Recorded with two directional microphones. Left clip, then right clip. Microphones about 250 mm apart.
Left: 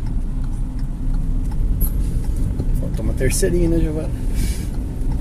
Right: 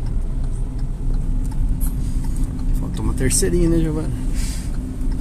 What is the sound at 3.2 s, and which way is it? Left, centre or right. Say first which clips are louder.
Speech: left 1 dB; right.